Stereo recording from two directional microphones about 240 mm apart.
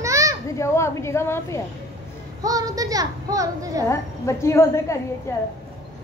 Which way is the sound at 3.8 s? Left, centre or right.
Centre.